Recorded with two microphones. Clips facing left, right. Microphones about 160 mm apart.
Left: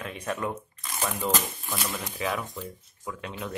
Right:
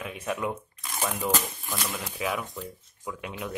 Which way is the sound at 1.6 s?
5° left (ahead or behind).